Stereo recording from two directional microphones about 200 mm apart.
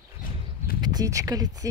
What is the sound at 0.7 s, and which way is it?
Speech, 20° right (ahead or behind).